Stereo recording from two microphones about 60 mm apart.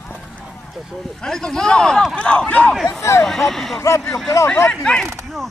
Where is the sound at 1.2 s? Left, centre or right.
Centre.